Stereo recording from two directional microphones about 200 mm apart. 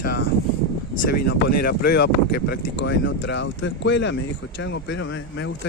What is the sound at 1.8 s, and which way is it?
Speech, 55° left (ahead or behind).